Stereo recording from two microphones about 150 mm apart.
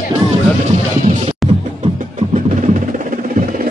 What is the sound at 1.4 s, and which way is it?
Music, 45° right (ahead or behind).